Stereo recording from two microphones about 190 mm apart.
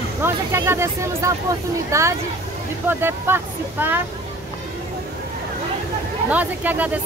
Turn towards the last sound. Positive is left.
turn(degrees=-10)  # may be behind; listen again after turning